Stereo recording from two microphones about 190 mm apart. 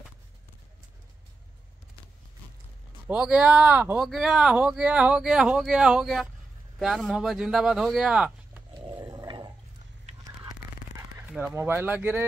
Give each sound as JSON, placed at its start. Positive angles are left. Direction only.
{"t": 3.1, "sound": "speech", "side_deg": -5}
{"t": 8.7, "sound": "a sound", "side_deg": -25}
{"t": 11.3, "sound": "speech", "side_deg": -10}